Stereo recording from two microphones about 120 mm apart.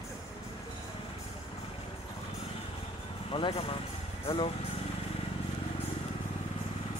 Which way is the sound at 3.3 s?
50° left (ahead or behind).